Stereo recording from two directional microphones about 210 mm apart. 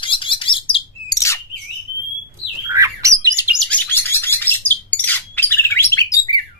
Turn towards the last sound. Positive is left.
turn(degrees=15)  # may be behind; listen again after turning